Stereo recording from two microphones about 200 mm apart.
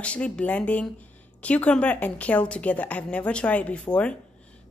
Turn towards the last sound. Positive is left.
turn(degrees=5)  # may be behind; listen again after turning